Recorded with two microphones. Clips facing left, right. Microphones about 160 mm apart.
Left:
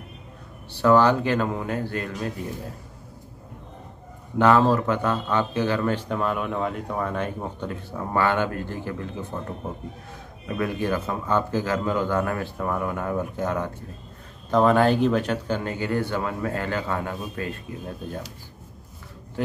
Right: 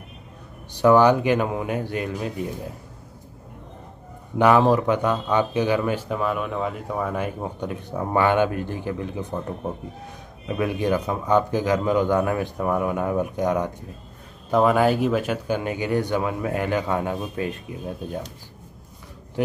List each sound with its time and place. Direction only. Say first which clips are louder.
0.7 s a man's voice: right 2 dB; 15° right (ahead or behind)
4.4 s a man's voice: right 1 dB; 15° right (ahead or behind)
10.5 s a man's voice: right 3 dB; 15° right (ahead or behind)